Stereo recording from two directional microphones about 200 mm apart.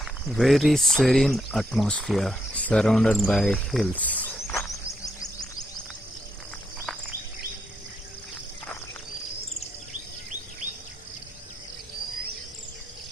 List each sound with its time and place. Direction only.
0.3 s speech: centre (ahead or behind)
4.6 s bird: 15° left (ahead or behind)